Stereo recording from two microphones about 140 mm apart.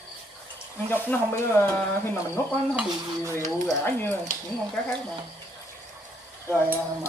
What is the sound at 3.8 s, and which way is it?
Speech, 15° left (ahead or behind).